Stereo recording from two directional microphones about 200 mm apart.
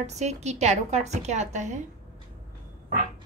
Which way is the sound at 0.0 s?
35° right (ahead or behind).